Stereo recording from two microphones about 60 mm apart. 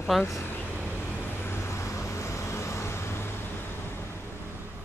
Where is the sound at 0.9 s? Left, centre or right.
Left.